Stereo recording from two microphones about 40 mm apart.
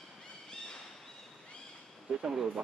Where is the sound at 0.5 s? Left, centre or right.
Centre.